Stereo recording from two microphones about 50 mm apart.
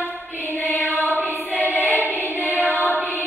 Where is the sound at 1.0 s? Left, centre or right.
Right.